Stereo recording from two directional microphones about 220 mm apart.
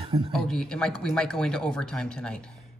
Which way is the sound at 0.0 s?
25° right (ahead or behind).